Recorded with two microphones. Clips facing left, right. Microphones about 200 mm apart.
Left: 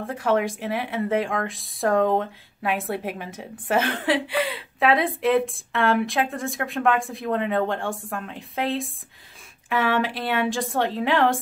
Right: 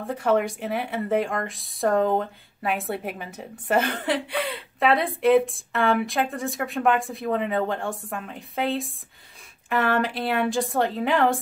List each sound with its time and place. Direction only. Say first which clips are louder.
0.0 s speech: even; centre (ahead or behind)